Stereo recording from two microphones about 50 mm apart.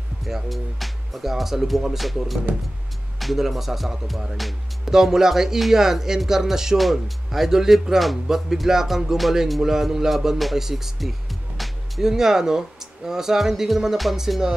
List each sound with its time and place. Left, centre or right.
0.2 s speech: centre